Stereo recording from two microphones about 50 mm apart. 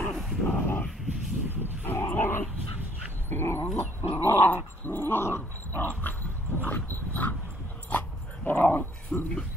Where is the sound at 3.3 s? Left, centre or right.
Left.